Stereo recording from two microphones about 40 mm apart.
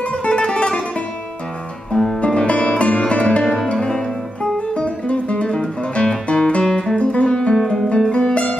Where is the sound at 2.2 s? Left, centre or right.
Left.